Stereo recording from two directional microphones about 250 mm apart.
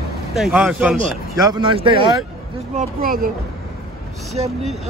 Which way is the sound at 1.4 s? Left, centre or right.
Centre.